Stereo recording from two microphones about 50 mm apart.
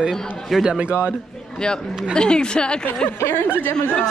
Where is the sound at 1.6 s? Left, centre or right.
Centre.